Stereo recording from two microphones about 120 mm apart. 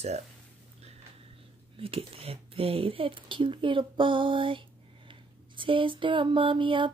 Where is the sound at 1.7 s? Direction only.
50° right (ahead or behind).